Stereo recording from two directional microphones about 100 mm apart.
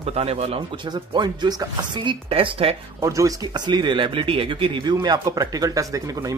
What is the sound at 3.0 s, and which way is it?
Speech, 35° right (ahead or behind).